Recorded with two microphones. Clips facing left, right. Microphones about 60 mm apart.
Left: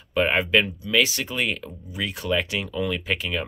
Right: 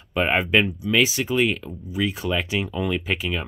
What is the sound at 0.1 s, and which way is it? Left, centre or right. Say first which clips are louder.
Speech: even; centre.